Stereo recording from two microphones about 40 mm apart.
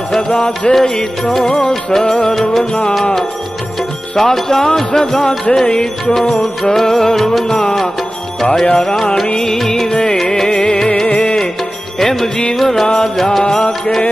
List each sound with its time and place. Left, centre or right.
0.3 s music: left
4.2 s music: centre
8.7 s music: centre
9.8 s music: left
12.0 s music: centre